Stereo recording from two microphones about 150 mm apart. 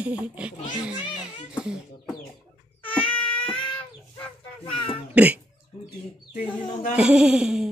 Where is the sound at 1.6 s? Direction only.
5° right (ahead or behind).